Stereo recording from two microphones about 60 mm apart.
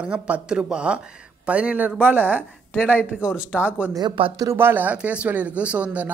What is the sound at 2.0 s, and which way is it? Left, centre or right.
A woman's voice, right.